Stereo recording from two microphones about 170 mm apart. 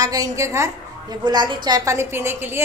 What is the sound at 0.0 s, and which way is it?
A woman's voice, 20° right (ahead or behind).